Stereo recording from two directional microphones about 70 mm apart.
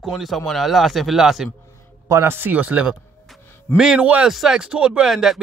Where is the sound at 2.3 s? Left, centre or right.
Right.